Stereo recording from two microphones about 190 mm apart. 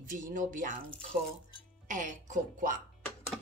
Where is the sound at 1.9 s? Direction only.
40° right (ahead or behind).